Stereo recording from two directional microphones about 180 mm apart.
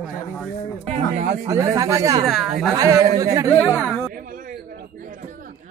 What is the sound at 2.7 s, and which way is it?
Speech, 20° right (ahead or behind).